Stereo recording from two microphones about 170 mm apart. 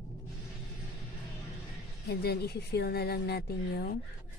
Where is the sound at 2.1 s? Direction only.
70° left (ahead or behind).